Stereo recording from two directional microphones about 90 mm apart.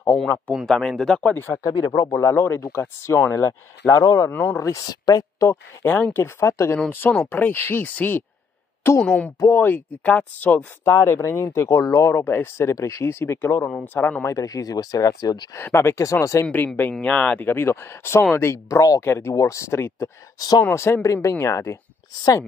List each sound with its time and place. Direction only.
0.7 s speech: 5° left (ahead or behind)
1.2 s speech: 25° left (ahead or behind)
4.8 s speech: 45° left (ahead or behind)
5.9 s speech: 20° left (ahead or behind)
9.4 s speech: 25° left (ahead or behind)
14.2 s speech: 40° left (ahead or behind)
15.5 s speech: 25° left (ahead or behind)
16.5 s speech: 20° left (ahead or behind)
20.3 s speech: 50° left (ahead or behind)
20.7 s speech: 30° left (ahead or behind)
22.1 s speech: 50° left (ahead or behind)